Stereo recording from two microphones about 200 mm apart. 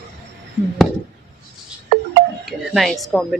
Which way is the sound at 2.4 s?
Centre (ahead or behind).